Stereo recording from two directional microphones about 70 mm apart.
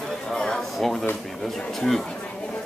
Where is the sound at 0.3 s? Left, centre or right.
Centre.